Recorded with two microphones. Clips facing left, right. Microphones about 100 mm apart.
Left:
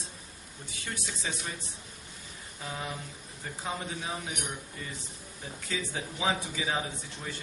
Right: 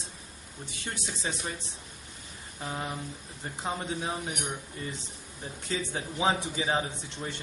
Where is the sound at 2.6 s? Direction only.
25° right (ahead or behind).